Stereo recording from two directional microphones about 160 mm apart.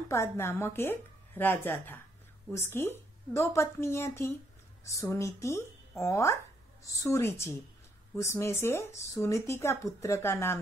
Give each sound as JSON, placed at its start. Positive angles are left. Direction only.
{"t": 0.1, "sound": "speech", "side_deg": 15}